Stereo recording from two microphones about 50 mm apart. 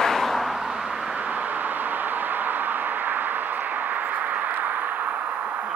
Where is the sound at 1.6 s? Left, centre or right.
Right.